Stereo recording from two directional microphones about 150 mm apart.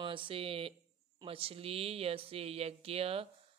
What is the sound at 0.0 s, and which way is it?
Speech, 35° right (ahead or behind).